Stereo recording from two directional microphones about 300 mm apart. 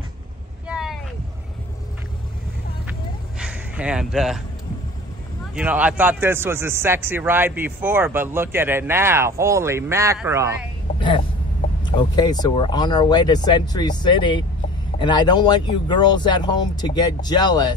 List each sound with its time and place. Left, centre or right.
0.7 s vehicle: centre
3.3 s a sound: centre
5.5 s speech: centre
11.0 s vehicle: centre
11.8 s speech: centre